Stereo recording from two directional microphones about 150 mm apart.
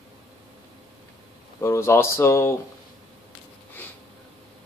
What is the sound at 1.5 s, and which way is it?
Speech, 20° left (ahead or behind).